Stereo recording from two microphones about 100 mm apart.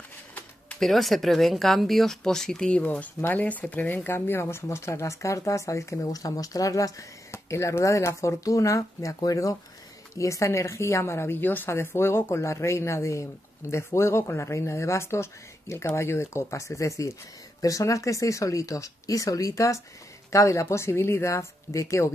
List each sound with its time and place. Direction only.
0.7 s speech: centre (ahead or behind); by 22.1 s 30° left (ahead or behind)